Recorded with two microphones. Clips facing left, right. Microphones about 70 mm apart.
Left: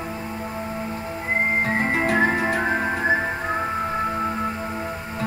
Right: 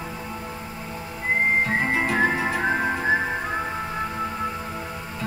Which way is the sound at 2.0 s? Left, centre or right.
Left.